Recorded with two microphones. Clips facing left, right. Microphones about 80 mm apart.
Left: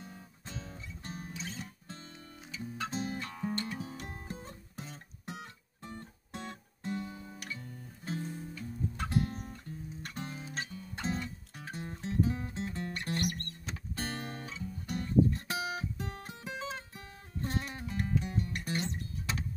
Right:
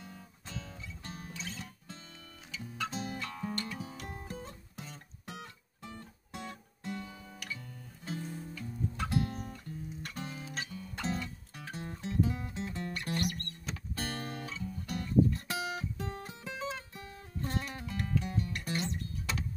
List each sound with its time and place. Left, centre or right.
0.0 s music: left